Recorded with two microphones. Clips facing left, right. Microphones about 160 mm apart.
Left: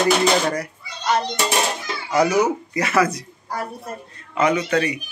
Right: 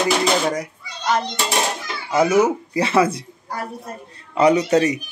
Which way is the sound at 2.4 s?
30° right (ahead or behind).